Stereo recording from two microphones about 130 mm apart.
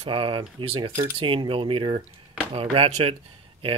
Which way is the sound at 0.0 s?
40° right (ahead or behind).